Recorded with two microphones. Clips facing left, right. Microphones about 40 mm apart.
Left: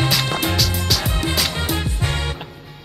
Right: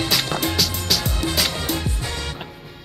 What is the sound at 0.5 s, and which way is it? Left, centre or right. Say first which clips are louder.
Music: left 1 dB; centre.